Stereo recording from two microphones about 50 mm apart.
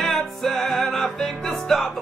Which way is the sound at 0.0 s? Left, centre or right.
Centre.